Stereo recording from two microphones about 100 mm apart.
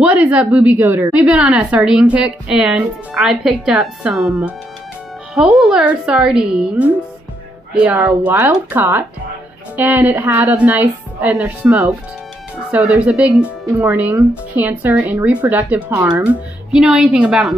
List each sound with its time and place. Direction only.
0.0 s a woman's voice: 15° right (ahead or behind)
15.9 s speech: 30° right (ahead or behind)
16.7 s a woman's voice: 5° right (ahead or behind)